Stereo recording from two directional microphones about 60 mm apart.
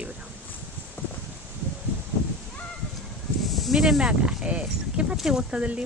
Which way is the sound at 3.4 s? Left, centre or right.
Centre.